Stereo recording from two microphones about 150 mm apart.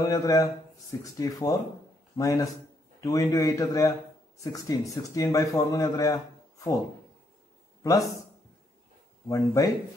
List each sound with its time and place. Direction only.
0.0 s a man's voice: 25° left (ahead or behind)
7.8 s speech: 20° left (ahead or behind)
9.3 s a man's voice: 20° left (ahead or behind)